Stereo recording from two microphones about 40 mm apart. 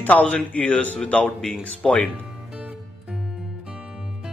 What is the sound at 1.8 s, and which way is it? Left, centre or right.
Speech, centre.